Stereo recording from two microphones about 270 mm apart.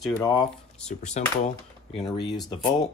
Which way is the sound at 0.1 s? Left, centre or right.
Centre.